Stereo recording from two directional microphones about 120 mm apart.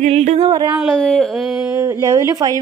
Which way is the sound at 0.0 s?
65° right (ahead or behind).